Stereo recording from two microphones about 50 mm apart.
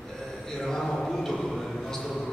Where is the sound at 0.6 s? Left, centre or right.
Centre.